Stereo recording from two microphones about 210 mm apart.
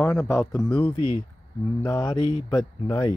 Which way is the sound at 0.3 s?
15° left (ahead or behind).